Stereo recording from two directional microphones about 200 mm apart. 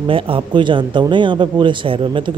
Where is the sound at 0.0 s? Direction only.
25° right (ahead or behind).